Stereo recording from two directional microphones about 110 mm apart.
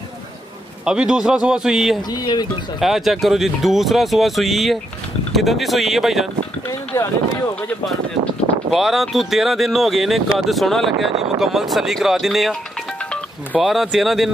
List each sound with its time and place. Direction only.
0.8 s speech: 5° right (ahead or behind)
2.0 s speech: 40° left (ahead or behind)
2.8 s speech: centre (ahead or behind)
8.6 s speech: 5° right (ahead or behind)
13.6 s speech: centre (ahead or behind)